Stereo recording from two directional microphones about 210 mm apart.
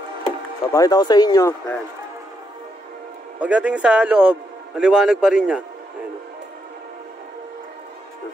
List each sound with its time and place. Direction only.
0.2 s speech: 15° left (ahead or behind)
3.3 s a man's voice: 5° right (ahead or behind)